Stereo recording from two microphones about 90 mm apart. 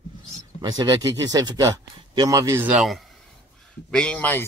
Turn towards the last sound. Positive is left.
turn(degrees=20)  # may be behind; listen again after turning